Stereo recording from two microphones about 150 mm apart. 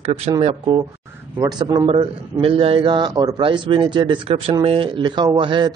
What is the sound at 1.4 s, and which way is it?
A man's voice, 30° right (ahead or behind).